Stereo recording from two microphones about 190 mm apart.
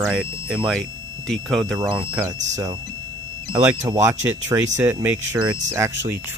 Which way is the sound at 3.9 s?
15° right (ahead or behind).